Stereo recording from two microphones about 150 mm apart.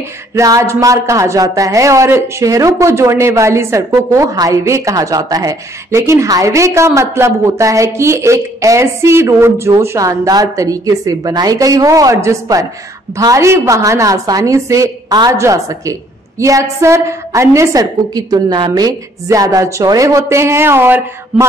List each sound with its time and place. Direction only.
0.3 s speech: 20° right (ahead or behind)